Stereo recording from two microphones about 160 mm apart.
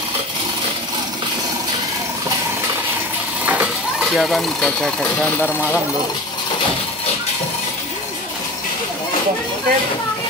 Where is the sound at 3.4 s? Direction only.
10° right (ahead or behind); by 5.6 s 10° left (ahead or behind).